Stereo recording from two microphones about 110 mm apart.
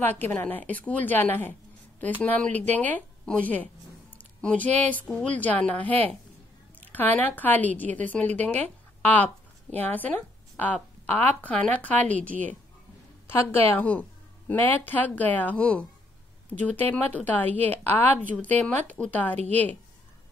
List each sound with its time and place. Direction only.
0.0 s a woman's voice: 15° left (ahead or behind)